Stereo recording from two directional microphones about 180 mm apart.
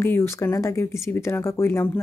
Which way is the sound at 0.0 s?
15° left (ahead or behind).